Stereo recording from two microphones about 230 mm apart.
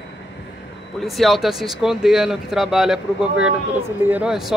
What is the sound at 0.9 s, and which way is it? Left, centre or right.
Speech, centre.